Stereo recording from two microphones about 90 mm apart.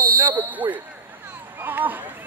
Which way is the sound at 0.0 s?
20° right (ahead or behind).